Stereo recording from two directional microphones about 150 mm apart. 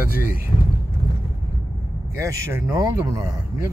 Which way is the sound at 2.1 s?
20° right (ahead or behind).